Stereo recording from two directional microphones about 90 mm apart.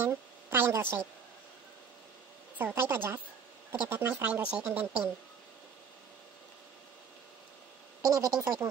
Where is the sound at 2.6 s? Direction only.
25° right (ahead or behind).